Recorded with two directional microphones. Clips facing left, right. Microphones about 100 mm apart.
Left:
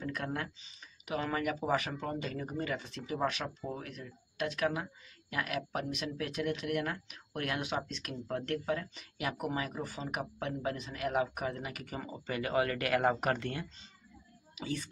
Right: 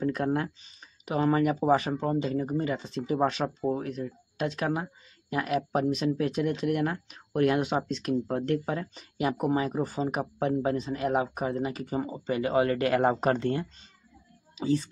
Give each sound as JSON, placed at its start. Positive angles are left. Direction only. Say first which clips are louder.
{"t": 0.0, "sound": "speech", "louder": "right 10 dB", "side_deg": -30}